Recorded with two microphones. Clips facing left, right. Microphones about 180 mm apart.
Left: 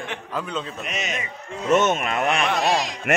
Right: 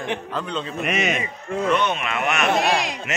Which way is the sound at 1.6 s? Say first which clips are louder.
Left 3 dB; 45° left (ahead or behind).